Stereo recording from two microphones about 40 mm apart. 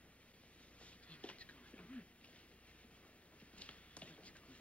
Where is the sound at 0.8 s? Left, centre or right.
Left.